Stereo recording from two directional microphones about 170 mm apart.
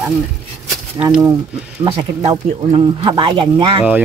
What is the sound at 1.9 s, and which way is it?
Speech, 35° right (ahead or behind).